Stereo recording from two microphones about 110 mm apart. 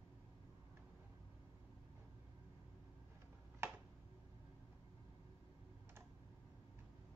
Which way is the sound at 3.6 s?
20° right (ahead or behind).